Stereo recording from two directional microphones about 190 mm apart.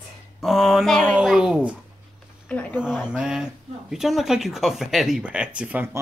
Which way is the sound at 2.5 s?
5° left (ahead or behind).